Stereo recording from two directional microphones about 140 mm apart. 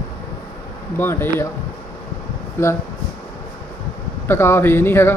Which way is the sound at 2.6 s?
20° left (ahead or behind).